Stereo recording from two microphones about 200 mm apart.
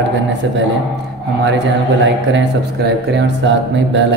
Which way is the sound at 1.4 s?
60° right (ahead or behind).